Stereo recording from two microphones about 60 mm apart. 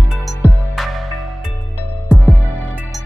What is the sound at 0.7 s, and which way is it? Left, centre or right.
Music, centre.